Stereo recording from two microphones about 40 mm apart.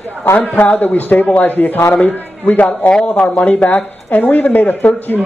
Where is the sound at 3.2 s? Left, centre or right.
Left.